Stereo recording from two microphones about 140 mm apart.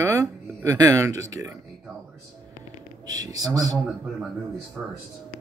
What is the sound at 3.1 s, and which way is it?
Speech, 25° right (ahead or behind).